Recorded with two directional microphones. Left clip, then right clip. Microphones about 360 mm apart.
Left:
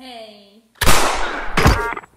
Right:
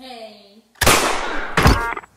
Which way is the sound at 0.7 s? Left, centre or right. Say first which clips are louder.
Right 1 dB; centre.